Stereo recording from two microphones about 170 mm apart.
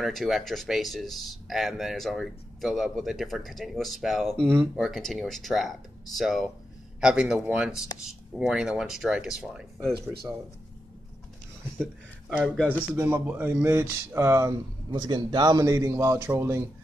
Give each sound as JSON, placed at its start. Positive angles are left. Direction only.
{"t": 0.0, "sound": "speech", "side_deg": 0}
{"t": 12.5, "sound": "speech", "side_deg": 10}
{"t": 12.9, "sound": "speech", "side_deg": -15}